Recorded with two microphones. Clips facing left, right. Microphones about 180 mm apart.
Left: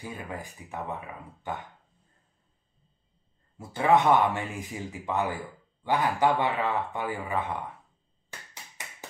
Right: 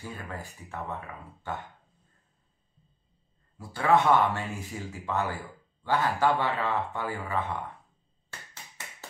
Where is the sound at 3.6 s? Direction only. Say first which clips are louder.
Left 1 dB; 20° left (ahead or behind).